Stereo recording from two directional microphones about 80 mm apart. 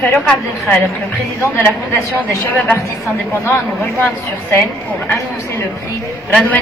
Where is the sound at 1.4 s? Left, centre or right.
Left.